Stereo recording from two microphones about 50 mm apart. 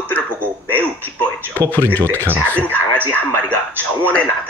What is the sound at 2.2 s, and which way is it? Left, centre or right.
Speech, right.